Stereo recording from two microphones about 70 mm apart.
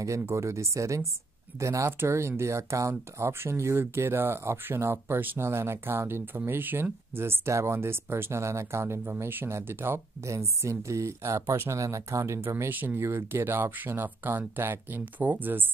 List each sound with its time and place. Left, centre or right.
0.3 s speech: right
10.2 s speech: right